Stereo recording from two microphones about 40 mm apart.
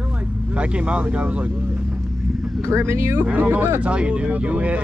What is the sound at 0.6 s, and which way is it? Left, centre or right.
Speech, right.